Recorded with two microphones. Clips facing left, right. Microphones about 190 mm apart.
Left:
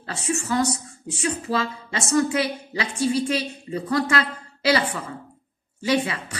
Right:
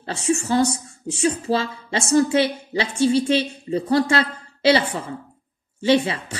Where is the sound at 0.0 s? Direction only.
30° right (ahead or behind).